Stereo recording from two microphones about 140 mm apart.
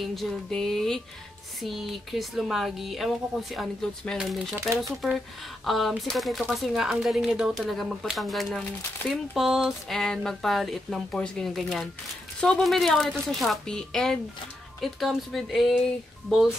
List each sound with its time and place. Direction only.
0.0 s speech: centre (ahead or behind)